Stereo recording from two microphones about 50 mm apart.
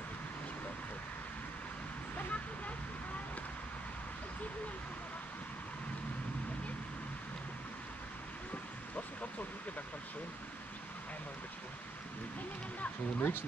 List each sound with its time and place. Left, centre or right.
12.8 s speech: left